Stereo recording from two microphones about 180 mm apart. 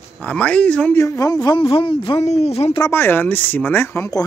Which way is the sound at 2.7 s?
15° left (ahead or behind).